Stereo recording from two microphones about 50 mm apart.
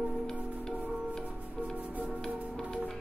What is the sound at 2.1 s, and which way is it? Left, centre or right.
Music, centre.